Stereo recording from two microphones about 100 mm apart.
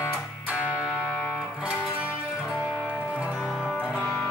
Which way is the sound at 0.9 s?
15° left (ahead or behind).